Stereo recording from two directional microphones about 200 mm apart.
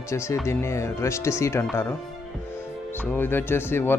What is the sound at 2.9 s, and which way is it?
Speech, 10° left (ahead or behind).